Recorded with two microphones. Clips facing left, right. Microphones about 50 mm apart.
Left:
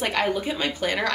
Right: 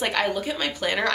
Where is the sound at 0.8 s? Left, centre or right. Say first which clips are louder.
Right 1 dB; centre.